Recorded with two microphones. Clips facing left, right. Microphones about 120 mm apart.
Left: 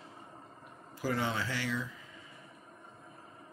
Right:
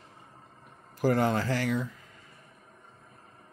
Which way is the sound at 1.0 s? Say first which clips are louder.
Right 8 dB; 50° right (ahead or behind).